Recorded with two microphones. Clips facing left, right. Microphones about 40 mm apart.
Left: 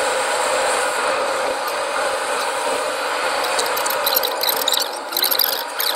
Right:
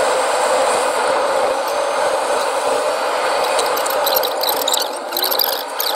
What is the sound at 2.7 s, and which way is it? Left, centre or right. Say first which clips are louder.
Vehicle: right 4 dB; left.